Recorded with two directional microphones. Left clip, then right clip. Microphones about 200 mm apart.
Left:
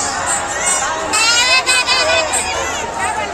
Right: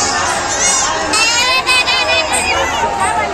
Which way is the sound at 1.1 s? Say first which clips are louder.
Left 1 dB; 50° left (ahead or behind).